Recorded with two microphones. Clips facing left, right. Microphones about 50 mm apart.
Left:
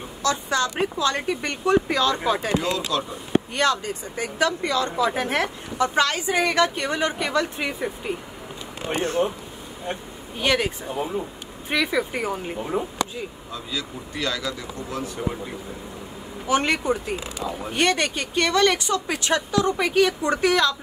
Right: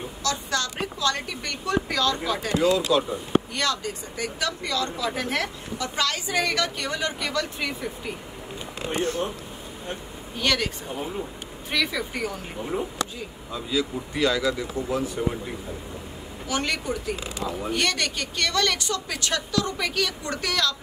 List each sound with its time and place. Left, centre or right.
0.2 s a woman's voice: left
2.9 s speech: centre
3.5 s a woman's voice: left
10.3 s speech: centre
11.7 s a woman's voice: centre
13.5 s speech: centre
16.4 s a woman's voice: left
17.5 s speech: centre
17.7 s a woman's voice: left